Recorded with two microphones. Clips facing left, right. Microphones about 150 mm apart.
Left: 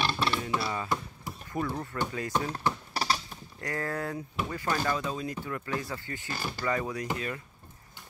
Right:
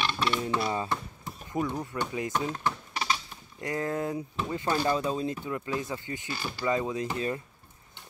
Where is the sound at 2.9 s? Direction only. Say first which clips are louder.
Left 1 dB; 40° left (ahead or behind).